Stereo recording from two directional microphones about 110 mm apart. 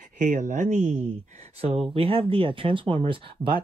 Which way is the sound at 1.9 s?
55° right (ahead or behind).